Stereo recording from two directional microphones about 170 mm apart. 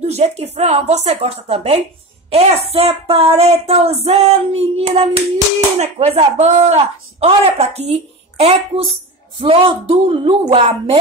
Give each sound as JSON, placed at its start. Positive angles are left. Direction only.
{"t": 0.0, "sound": "speech", "side_deg": -40}